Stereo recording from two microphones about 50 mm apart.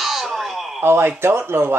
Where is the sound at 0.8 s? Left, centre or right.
Right.